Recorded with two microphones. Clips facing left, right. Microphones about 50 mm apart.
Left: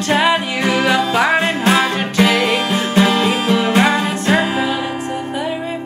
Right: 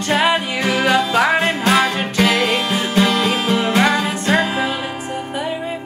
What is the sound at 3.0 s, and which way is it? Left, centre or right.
Music, left.